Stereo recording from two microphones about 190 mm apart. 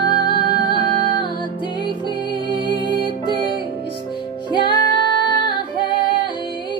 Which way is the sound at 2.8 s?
25° left (ahead or behind).